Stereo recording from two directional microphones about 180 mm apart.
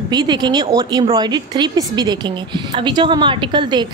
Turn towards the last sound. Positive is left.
turn(degrees=-25)  # may be behind; listen again after turning